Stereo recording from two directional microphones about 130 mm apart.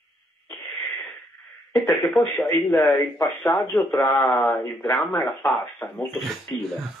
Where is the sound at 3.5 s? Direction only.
Centre (ahead or behind).